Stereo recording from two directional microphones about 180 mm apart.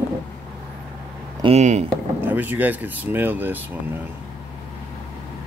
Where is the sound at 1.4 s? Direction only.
35° right (ahead or behind).